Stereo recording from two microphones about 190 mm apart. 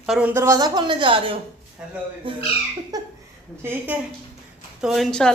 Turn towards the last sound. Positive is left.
turn(degrees=0)  # may be behind; listen again after turning